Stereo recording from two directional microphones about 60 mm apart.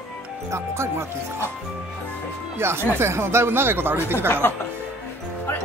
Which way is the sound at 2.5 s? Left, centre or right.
Right.